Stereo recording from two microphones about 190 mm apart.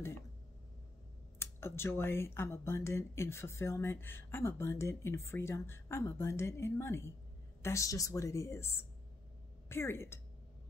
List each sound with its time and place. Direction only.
1.4 s a woman's voice: 15° left (ahead or behind)